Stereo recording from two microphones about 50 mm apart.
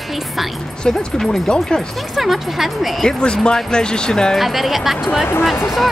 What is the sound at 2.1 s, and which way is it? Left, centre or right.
Speech, centre.